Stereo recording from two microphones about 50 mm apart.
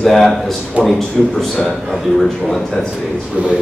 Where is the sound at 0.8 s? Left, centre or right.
Right.